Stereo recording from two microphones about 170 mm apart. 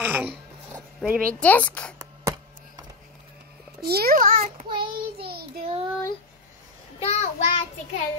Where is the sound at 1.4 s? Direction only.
10° left (ahead or behind).